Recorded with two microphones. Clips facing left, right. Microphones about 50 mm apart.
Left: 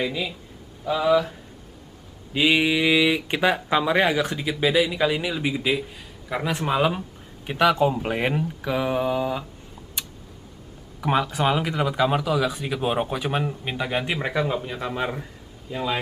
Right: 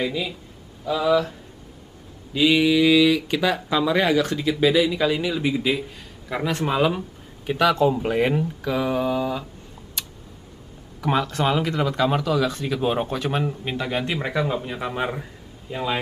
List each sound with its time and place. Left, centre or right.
0.0 s speech: centre
2.3 s speech: left
11.0 s speech: centre